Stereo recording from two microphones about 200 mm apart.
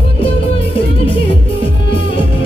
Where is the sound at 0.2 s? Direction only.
25° left (ahead or behind).